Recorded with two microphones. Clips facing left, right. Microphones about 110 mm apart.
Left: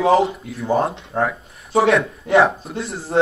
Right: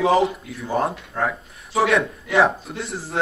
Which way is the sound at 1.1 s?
30° left (ahead or behind).